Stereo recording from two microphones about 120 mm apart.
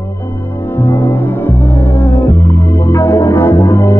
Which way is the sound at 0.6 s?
15° left (ahead or behind).